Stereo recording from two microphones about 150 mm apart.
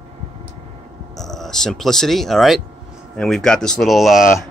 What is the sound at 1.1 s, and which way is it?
Speech, centre (ahead or behind).